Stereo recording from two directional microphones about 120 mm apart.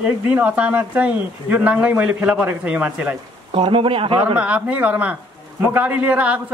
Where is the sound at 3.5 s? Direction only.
45° right (ahead or behind).